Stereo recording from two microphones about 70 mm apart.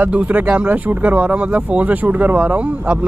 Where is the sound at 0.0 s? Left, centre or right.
Right.